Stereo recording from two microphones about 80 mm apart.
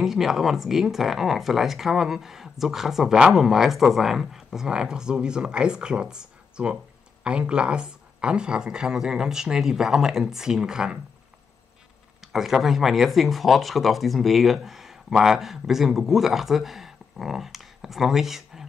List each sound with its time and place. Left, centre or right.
0.0 s speech: centre
12.2 s speech: centre